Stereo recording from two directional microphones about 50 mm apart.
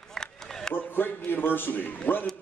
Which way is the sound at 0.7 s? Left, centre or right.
Left.